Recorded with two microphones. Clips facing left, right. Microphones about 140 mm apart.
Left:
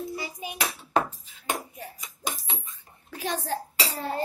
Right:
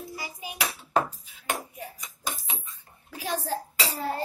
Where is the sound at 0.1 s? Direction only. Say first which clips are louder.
Left 4 dB; 25° left (ahead or behind).